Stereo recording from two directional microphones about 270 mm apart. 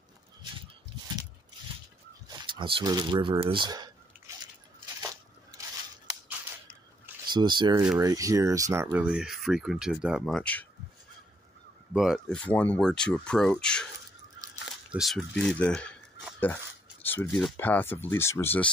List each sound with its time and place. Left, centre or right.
2.2 s speech: centre
7.3 s speech: centre
11.9 s speech: centre
14.9 s speech: centre